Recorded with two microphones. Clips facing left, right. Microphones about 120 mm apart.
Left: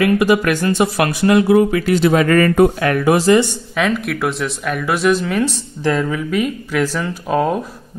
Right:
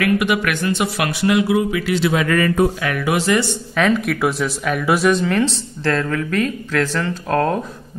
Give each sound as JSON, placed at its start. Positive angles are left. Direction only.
{"t": 0.0, "sound": "speech", "side_deg": 35}
{"t": 3.7, "sound": "speech", "side_deg": 0}